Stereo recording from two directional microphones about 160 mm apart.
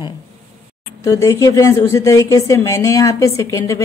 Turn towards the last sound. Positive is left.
turn(degrees=20)  # may be behind; listen again after turning